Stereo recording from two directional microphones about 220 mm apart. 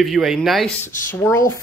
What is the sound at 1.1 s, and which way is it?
Speech, 10° left (ahead or behind).